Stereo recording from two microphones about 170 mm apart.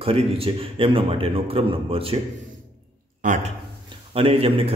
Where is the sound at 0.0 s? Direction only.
35° right (ahead or behind).